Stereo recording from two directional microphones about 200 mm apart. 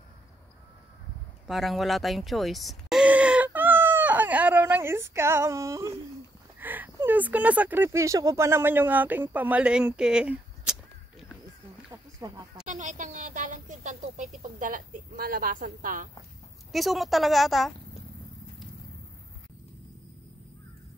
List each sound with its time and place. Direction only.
1.5 s a sound: centre (ahead or behind); by 5.9 s 15° right (ahead or behind)
6.6 s speech: 10° right (ahead or behind)
12.6 s speech: 40° right (ahead or behind)
16.7 s a woman's voice: centre (ahead or behind)